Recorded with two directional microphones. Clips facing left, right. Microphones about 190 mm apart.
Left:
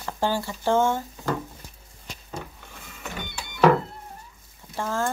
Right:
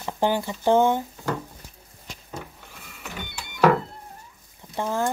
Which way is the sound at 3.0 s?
5° right (ahead or behind).